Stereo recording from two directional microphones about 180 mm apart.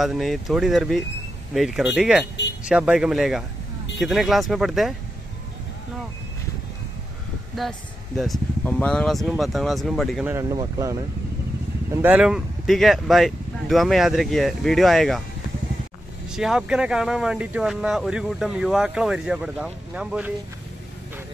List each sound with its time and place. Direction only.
0.0 s speech: centre (ahead or behind)
7.6 s speech: centre (ahead or behind)
10.3 s speech: 20° right (ahead or behind); by 15.2 s centre (ahead or behind)
16.3 s speech: 5° right (ahead or behind)